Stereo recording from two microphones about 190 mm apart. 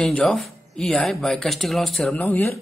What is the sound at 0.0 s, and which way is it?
Speech, 5° left (ahead or behind).